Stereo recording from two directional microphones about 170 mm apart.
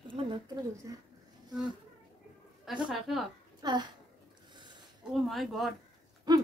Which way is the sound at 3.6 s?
25° right (ahead or behind).